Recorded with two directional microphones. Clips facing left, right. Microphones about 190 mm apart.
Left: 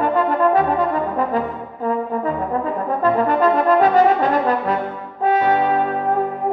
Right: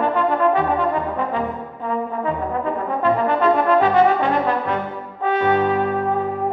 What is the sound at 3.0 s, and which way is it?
Brass instrument, 40° left (ahead or behind).